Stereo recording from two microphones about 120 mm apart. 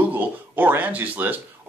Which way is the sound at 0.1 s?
15° right (ahead or behind).